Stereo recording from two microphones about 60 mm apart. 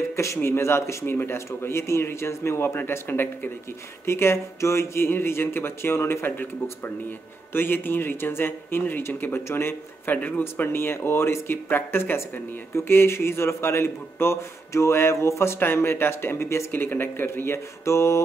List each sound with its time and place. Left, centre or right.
0.1 s a man's voice: left
4.0 s speech: left
10.1 s speech: left
10.4 s speech: left
15.6 s speech: left
16.7 s speech: left